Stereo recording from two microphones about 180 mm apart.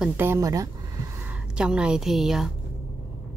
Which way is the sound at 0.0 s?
10° right (ahead or behind).